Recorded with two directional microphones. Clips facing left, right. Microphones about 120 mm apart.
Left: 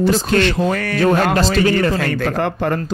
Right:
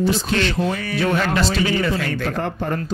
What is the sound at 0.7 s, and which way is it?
Speech, 75° left (ahead or behind).